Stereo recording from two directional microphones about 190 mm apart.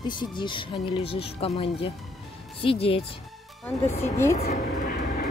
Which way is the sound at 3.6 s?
15° left (ahead or behind).